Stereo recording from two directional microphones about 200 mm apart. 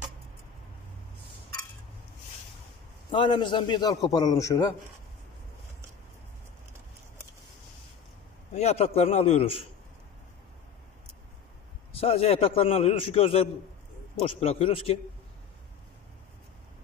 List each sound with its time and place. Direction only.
3.1 s a man's voice: 25° left (ahead or behind)
8.5 s a man's voice: 30° left (ahead or behind)
11.9 s a man's voice: 30° left (ahead or behind)